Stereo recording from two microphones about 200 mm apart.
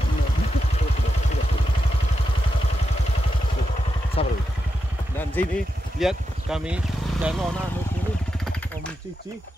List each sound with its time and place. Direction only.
4.2 s vehicle: 30° left (ahead or behind)
5.4 s speech: 10° left (ahead or behind)
5.9 s speech: 5° right (ahead or behind)